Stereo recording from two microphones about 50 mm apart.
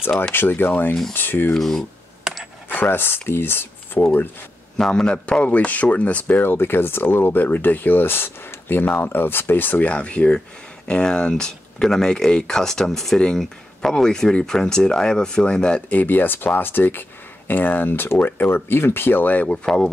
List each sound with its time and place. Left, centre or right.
0.3 s speech: left
1.5 s speech: centre
2.7 s speech: left
4.7 s a man's voice: centre; by 6.5 s left
6.5 s speech: left
9.8 s a man's voice: left
15.9 s speech: left
19.2 s speech: left
19.6 s speech: centre